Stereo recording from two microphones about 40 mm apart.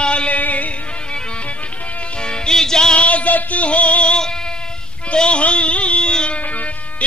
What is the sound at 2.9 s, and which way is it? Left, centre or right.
Music, left.